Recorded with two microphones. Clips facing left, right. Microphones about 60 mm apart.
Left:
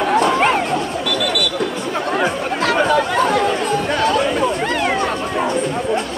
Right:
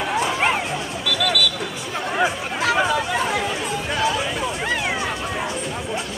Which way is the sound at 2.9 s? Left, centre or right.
Left.